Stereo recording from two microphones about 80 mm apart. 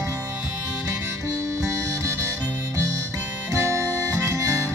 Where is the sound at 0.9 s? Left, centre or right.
Right.